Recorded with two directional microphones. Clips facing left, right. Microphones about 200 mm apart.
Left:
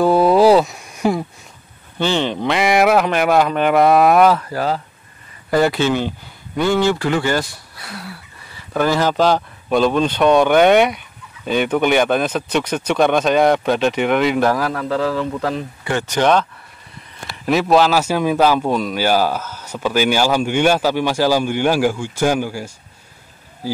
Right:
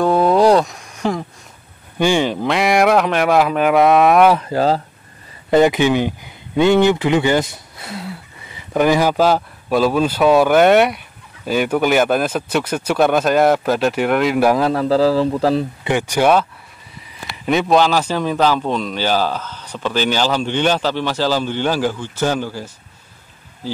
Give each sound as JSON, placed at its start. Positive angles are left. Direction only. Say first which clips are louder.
{"t": 0.0, "sound": "a sound", "louder": "left 1 dB", "side_deg": 5}
{"t": 2.0, "sound": "speech", "louder": "right 3 dB", "side_deg": -10}
{"t": 4.3, "sound": "speech", "louder": "right 3 dB", "side_deg": -20}
{"t": 5.5, "sound": "speech", "louder": "right 3 dB", "side_deg": -20}
{"t": 14.5, "sound": "speech", "louder": "right 4 dB", "side_deg": -25}
{"t": 15.9, "sound": "a man's voice", "louder": "right 1 dB", "side_deg": -15}